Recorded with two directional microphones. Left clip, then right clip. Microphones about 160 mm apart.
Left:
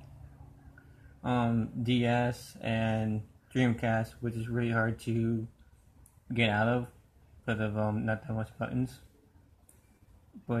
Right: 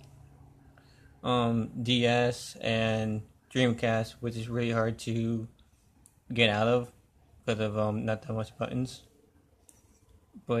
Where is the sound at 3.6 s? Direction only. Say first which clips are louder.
Right 3 dB; 45° right (ahead or behind).